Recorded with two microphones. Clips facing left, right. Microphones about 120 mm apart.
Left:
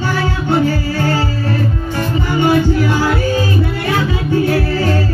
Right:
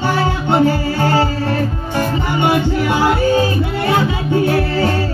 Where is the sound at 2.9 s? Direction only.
25° right (ahead or behind).